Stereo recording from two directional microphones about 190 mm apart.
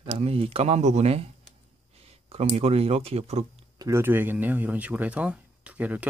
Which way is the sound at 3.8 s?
15° right (ahead or behind).